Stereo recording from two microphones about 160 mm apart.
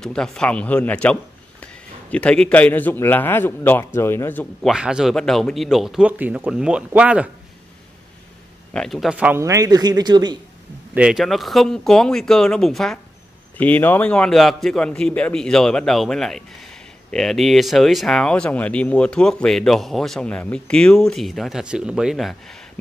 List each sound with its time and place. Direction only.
0.0 s a man's voice: 5° left (ahead or behind)
4.6 s a man's voice: 5° right (ahead or behind)
8.7 s a man's voice: centre (ahead or behind)
9.4 s speech: 20° right (ahead or behind)
11.0 s a man's voice: 5° right (ahead or behind)